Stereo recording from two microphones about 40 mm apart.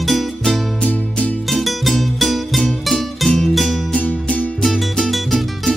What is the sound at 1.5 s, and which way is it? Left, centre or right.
Music, centre.